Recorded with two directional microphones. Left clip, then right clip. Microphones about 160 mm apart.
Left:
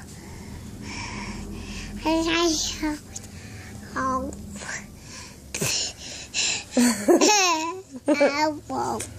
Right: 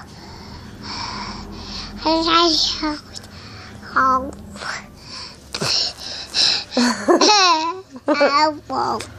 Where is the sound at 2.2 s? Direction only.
35° left (ahead or behind).